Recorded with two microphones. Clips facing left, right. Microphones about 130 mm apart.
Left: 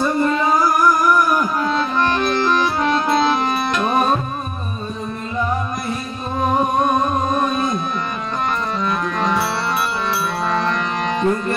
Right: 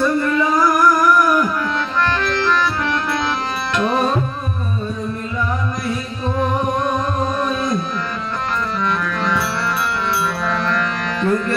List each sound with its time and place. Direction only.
2.0 s music: 15° left (ahead or behind)
10.4 s music: 25° left (ahead or behind)